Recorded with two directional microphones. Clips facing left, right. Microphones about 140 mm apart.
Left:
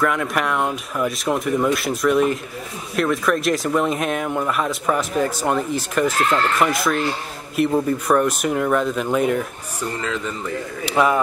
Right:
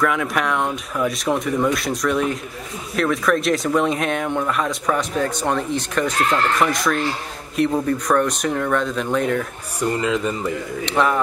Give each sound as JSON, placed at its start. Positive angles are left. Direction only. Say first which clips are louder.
{"t": 0.0, "sound": "speech", "louder": "even", "side_deg": 0}
{"t": 9.8, "sound": "speech", "louder": "right 5 dB", "side_deg": -15}
{"t": 10.9, "sound": "speech", "louder": "left 1 dB", "side_deg": 5}